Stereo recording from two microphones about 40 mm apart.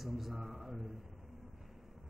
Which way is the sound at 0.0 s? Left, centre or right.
Centre.